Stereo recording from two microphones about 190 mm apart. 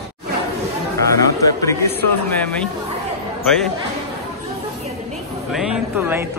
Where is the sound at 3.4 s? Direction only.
5° left (ahead or behind).